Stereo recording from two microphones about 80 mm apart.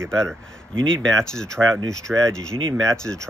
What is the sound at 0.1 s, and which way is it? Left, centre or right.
Speech, centre.